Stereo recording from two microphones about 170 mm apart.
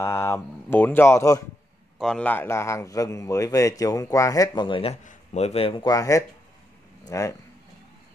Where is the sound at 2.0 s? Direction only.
5° left (ahead or behind); by 4.9 s 30° left (ahead or behind).